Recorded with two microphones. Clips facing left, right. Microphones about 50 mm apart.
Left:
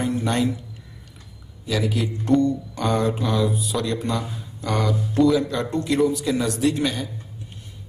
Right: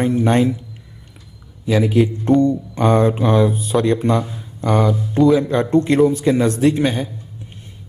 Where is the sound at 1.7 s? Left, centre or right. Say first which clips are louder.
Right 8 dB; right.